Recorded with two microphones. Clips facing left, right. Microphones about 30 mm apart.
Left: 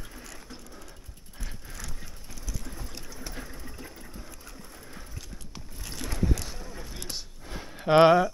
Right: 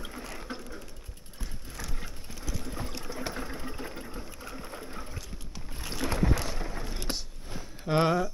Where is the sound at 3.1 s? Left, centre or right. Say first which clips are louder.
Right 6 dB; right.